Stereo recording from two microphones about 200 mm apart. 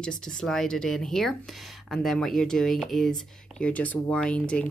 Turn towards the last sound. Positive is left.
turn(degrees=5)  # may be behind; listen again after turning